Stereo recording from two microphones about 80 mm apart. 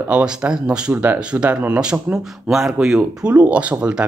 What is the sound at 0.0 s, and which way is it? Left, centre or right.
Speech, centre.